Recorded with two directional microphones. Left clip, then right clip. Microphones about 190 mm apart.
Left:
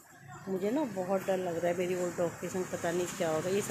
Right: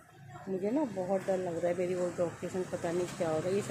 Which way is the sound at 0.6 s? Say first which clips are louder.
Even; 5° left (ahead or behind).